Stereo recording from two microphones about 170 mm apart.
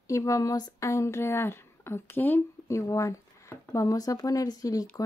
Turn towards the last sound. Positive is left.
turn(degrees=20)  # may be behind; listen again after turning